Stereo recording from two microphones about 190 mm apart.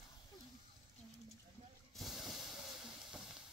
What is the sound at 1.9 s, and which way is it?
Hiss, centre (ahead or behind).